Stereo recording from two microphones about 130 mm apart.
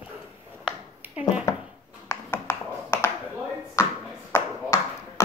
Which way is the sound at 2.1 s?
20° left (ahead or behind).